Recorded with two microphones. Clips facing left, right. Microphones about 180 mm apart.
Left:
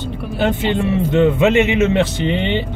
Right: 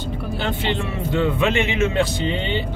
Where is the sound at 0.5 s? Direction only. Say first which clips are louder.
Left 7 dB; 20° left (ahead or behind).